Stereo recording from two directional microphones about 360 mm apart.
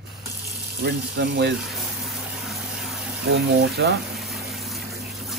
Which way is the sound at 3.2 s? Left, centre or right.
Right.